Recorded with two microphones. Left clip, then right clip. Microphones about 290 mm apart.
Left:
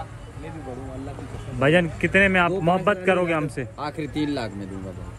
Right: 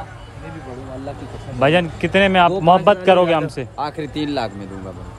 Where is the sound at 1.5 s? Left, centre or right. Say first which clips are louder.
Right 4 dB; centre.